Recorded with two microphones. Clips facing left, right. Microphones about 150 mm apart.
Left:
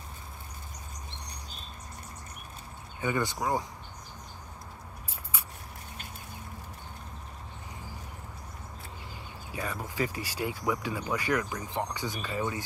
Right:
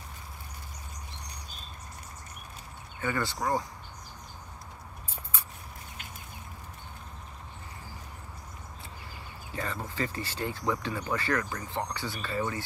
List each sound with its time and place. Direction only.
3.0 s speech: 15° left (ahead or behind)
9.5 s speech: 10° left (ahead or behind)